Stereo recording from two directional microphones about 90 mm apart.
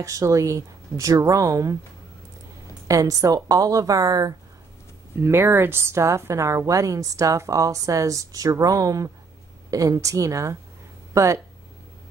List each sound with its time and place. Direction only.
0.0 s a woman's voice: 35° right (ahead or behind)
2.9 s a woman's voice: 40° right (ahead or behind)
5.2 s a woman's voice: 25° right (ahead or behind)